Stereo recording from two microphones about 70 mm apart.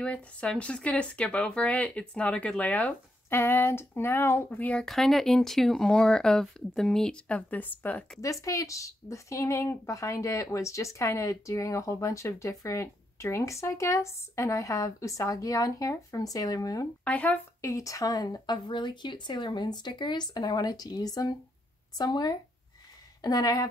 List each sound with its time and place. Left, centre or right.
0.0 s speech: centre
3.3 s speech: left
4.8 s speech: centre; by 8.0 s left
8.2 s speech: left
17.0 s speech: left
17.6 s speech: left
21.9 s speech: left
23.2 s speech: left